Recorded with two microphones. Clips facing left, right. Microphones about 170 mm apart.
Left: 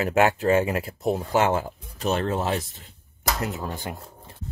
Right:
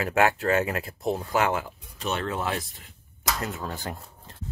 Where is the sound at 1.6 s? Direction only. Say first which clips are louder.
Left 5 dB; 40° left (ahead or behind).